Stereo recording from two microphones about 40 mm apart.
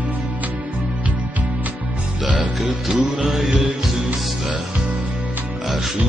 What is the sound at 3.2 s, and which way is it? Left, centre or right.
Music, centre.